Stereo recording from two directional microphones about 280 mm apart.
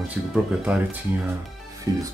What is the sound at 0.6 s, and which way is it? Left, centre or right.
Speech, centre.